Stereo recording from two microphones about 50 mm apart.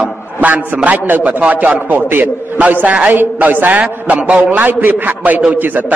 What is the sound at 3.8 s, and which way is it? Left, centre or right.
A man's voice, right.